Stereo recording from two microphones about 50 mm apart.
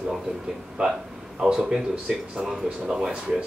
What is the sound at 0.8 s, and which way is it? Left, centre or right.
Speech, right.